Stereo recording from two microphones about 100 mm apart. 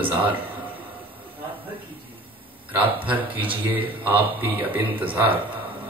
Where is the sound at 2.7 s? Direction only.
15° right (ahead or behind).